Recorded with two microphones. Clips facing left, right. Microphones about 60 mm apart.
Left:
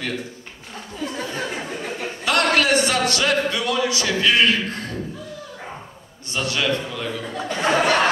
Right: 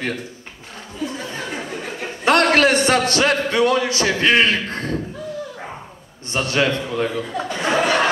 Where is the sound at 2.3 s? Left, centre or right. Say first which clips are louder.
Right 4 dB; right.